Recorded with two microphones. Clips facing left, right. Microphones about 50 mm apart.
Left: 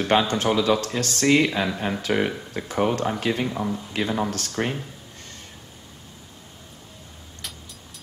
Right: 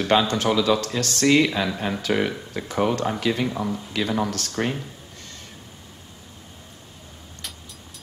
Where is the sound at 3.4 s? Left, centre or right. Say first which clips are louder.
Even; centre.